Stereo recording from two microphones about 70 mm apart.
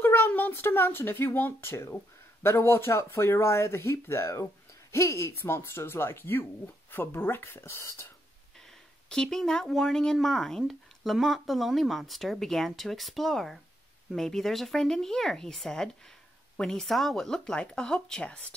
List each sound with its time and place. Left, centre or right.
0.0 s a sound: left
0.3 s speech: left
9.1 s speech: centre